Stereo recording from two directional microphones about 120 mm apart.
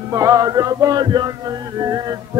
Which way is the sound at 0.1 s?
30° right (ahead or behind).